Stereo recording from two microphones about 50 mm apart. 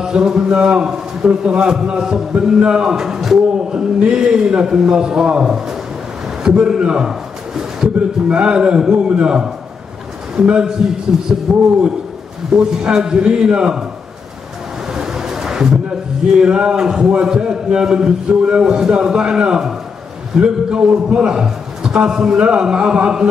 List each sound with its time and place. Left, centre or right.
0.0 s a man's voice: centre
2.0 s a man's voice: centre
2.3 s a man's voice: centre
7.1 s a sound: centre
8.3 s a man's voice: right
15.0 s a sound: centre
16.3 s a man's voice: centre